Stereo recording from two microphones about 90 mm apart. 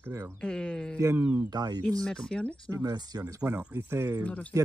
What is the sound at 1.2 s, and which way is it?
Speech, 20° right (ahead or behind).